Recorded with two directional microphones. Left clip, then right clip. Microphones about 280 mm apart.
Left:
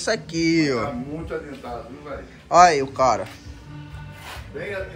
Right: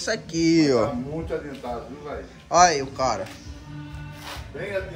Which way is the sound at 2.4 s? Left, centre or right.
Centre.